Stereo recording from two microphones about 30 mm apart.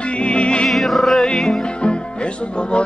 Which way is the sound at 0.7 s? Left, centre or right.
Centre.